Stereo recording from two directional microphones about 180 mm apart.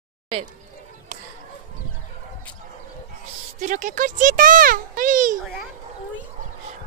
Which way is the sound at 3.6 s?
45° right (ahead or behind).